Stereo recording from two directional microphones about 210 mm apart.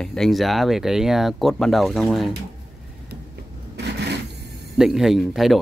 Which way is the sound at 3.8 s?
50° right (ahead or behind).